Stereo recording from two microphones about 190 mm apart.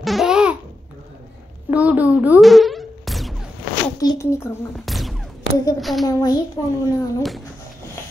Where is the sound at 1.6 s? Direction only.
10° right (ahead or behind).